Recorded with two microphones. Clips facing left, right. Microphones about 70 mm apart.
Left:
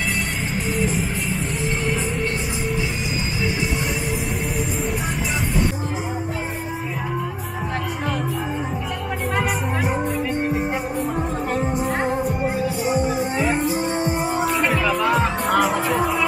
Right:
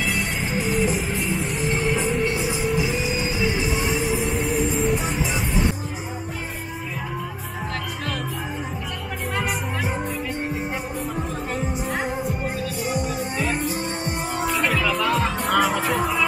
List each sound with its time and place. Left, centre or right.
0.6 s music: centre
11.1 s music: left
13.2 s music: centre
14.8 s music: centre